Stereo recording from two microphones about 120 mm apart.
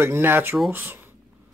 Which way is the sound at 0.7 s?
15° right (ahead or behind).